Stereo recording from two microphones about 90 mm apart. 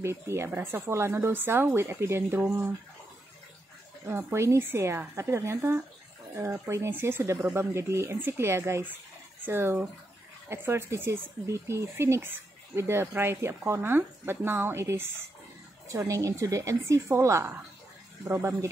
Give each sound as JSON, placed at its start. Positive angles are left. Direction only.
{"t": 0.0, "sound": "speech", "side_deg": -30}
{"t": 4.0, "sound": "a woman's voice", "side_deg": -30}